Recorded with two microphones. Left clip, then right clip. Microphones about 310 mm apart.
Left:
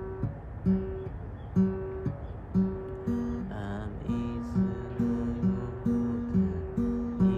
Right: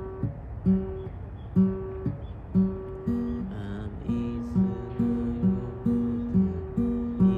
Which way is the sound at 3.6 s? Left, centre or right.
Centre.